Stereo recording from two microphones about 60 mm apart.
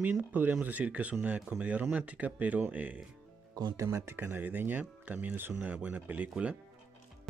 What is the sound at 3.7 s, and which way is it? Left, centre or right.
Speech, right.